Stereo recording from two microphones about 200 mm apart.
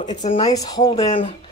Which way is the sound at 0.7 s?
20° left (ahead or behind).